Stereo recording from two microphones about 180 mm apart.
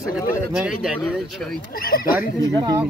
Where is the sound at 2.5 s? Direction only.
20° right (ahead or behind).